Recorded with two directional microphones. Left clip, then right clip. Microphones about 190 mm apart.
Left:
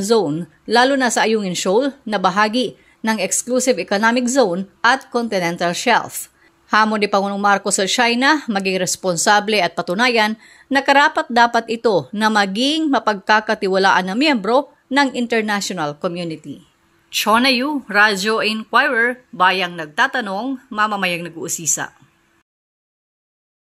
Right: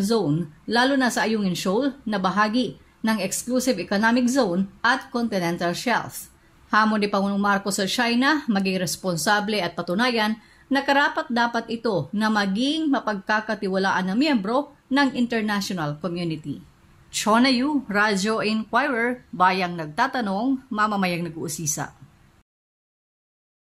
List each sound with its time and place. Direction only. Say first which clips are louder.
0.0 s speech: left 7 dB; 40° left (ahead or behind)
17.1 s speech: left 5 dB; 15° left (ahead or behind)